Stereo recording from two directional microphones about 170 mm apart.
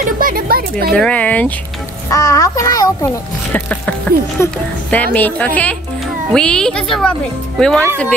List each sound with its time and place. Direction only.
0.2 s speech: 60° right (ahead or behind)
0.9 s speech: 5° left (ahead or behind)
2.0 s a child's voice: 20° left (ahead or behind)
3.5 s a child's voice: 10° left (ahead or behind)